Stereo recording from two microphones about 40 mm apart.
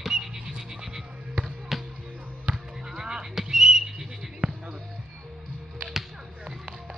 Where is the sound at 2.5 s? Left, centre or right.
Centre.